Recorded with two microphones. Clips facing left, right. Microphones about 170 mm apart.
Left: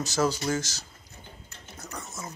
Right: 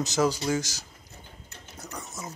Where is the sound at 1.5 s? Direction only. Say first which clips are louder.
Right 1 dB; 15° right (ahead or behind).